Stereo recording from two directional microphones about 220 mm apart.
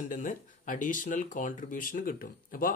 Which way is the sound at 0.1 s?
35° left (ahead or behind).